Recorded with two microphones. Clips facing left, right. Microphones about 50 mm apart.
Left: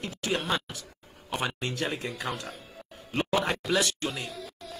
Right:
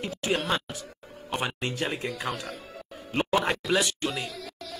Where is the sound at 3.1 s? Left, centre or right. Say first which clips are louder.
Right 2 dB; centre.